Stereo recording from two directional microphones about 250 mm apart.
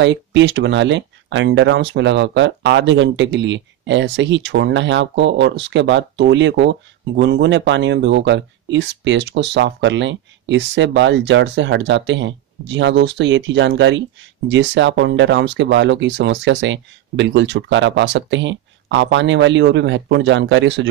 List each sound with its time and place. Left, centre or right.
0.0 s speech: right